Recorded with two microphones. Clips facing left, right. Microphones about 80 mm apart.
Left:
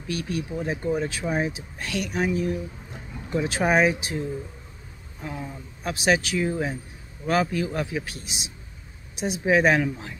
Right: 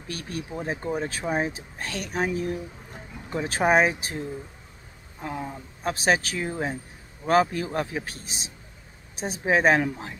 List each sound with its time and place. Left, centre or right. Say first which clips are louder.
0.0 s speech: left 5 dB; right
5.2 s speech: right 2 dB; right
5.9 s a woman's voice: left 2 dB; right